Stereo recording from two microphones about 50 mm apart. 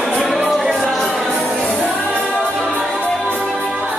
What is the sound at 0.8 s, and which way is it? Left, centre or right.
Music, centre.